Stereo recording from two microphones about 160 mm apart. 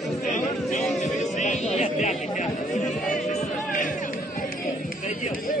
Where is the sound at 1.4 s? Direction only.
50° left (ahead or behind).